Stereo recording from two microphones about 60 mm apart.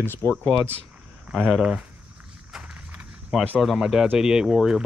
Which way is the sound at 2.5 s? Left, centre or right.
Centre.